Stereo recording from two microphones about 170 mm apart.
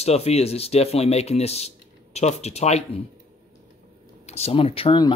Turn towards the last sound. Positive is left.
turn(degrees=30)  # may be behind; listen again after turning